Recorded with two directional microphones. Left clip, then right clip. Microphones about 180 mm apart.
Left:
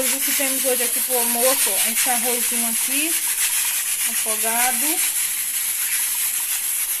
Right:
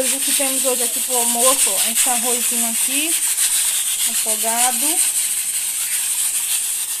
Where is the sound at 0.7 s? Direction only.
20° right (ahead or behind).